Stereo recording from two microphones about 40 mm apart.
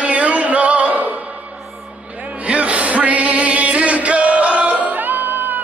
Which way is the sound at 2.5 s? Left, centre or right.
Right.